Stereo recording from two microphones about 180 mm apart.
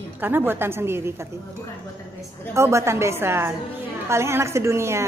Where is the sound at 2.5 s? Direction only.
15° right (ahead or behind).